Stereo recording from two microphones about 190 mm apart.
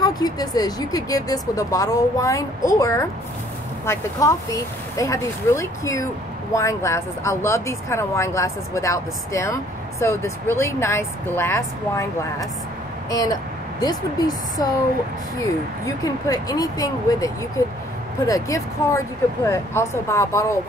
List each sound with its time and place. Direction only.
0.0 s speech: 20° left (ahead or behind)
15.8 s speech: 20° left (ahead or behind)